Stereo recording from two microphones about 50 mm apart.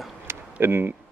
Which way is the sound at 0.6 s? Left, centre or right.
Right.